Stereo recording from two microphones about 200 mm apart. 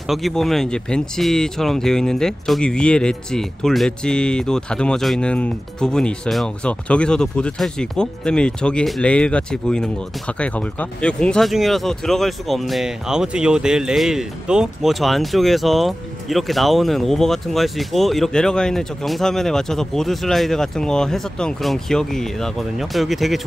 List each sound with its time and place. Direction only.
0.1 s speech: centre (ahead or behind)